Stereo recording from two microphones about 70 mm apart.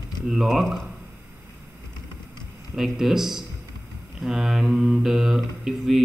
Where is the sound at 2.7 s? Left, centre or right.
Centre.